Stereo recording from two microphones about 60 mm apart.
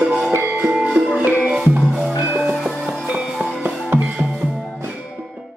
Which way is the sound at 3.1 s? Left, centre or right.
Centre.